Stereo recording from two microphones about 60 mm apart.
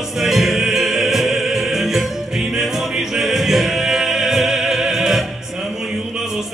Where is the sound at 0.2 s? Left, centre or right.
Centre.